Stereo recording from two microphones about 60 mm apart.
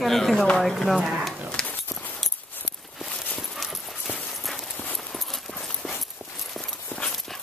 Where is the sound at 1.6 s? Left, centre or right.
Centre.